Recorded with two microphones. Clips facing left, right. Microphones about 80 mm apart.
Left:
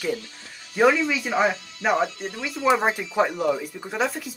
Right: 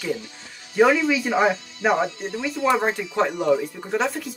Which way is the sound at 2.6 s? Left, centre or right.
Centre.